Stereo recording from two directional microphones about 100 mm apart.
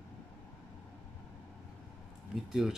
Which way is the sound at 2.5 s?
5° right (ahead or behind).